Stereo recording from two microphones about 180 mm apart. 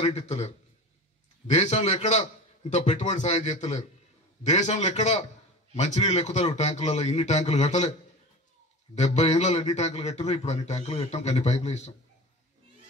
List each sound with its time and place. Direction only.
0.1 s a man's voice: 40° left (ahead or behind)
1.5 s a man's voice: 40° left (ahead or behind)
8.9 s a man's voice: 40° left (ahead or behind)